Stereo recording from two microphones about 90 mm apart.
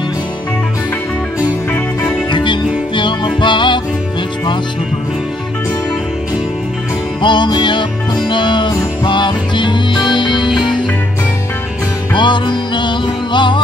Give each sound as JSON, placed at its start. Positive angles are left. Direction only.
{"t": 2.3, "sound": "music", "side_deg": 60}
{"t": 7.2, "sound": "music", "side_deg": 60}
{"t": 12.1, "sound": "music", "side_deg": 60}